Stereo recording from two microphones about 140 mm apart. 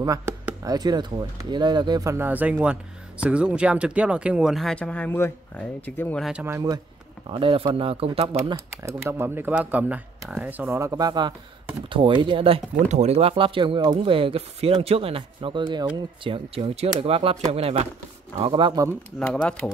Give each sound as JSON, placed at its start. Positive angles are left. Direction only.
{"t": 0.0, "sound": "speech", "side_deg": -25}
{"t": 6.4, "sound": "speech", "side_deg": -20}
{"t": 7.2, "sound": "speech", "side_deg": -40}
{"t": 8.8, "sound": "speech", "side_deg": -15}
{"t": 12.8, "sound": "speech", "side_deg": -55}
{"t": 16.3, "sound": "speech", "side_deg": -40}
{"t": 18.4, "sound": "speech", "side_deg": -35}
{"t": 19.1, "sound": "speech", "side_deg": 5}